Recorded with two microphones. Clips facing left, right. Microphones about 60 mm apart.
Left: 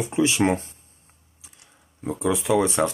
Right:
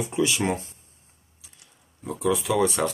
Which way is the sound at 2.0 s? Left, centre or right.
Left.